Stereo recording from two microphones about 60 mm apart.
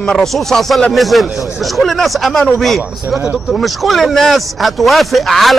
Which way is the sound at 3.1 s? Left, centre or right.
Right.